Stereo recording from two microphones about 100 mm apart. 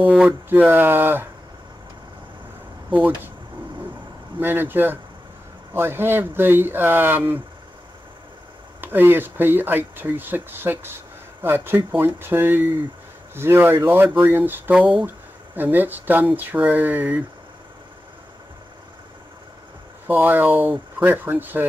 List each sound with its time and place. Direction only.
0.0 s speech: 15° right (ahead or behind)
4.4 s speech: 20° right (ahead or behind)
8.8 s speech: 20° right (ahead or behind)
14.2 s a sound: 20° right (ahead or behind)
15.5 s speech: 20° right (ahead or behind)
20.1 s speech: 20° right (ahead or behind)